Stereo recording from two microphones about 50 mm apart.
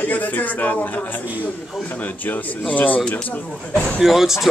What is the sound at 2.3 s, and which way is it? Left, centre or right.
Speech, left.